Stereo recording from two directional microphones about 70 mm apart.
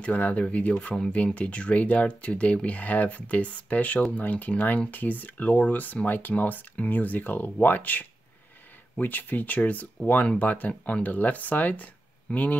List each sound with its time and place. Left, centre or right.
0.0 s speech: centre